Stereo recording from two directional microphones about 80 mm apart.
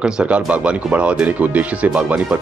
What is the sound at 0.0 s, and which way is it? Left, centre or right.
Speech, centre.